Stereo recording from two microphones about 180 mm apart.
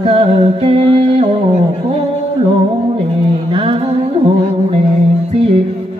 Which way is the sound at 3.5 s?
30° right (ahead or behind).